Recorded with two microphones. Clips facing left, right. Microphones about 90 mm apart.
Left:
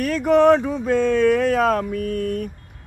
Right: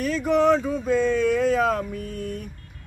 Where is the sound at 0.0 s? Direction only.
55° left (ahead or behind).